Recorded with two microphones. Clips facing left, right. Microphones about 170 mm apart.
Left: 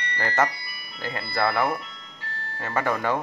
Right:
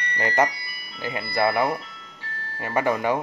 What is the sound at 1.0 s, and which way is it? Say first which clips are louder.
Speech: right 3 dB; 15° right (ahead or behind).